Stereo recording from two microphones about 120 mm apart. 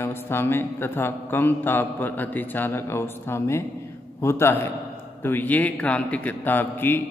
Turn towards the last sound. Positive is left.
turn(degrees=15)  # may be behind; listen again after turning